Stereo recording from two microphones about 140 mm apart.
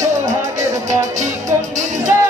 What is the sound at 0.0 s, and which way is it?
Music, 55° right (ahead or behind).